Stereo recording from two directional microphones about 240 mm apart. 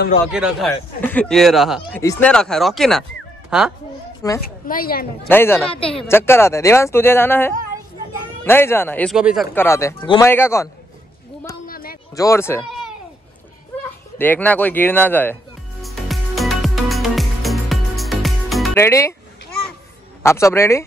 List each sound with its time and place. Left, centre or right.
0.3 s speech: centre
1.8 s speech: centre
4.4 s a woman's voice: left
5.3 s speech: centre
9.6 s speech: centre
11.6 s a sound: left
12.2 s speech: centre
13.8 s speech: centre
15.8 s music: centre
18.8 s speech: centre
20.2 s speech: centre